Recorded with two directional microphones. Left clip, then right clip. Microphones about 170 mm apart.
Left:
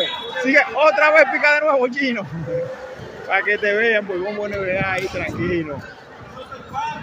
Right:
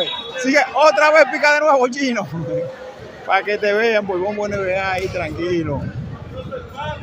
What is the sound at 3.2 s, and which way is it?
Speech, 25° right (ahead or behind).